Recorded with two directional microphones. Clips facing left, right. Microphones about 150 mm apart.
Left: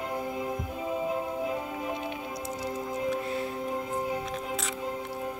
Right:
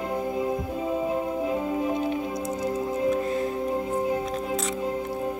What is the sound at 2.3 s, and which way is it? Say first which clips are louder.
Music: right 6 dB; 50° right (ahead or behind).